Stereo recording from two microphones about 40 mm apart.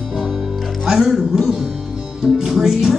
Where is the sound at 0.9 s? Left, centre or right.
Centre.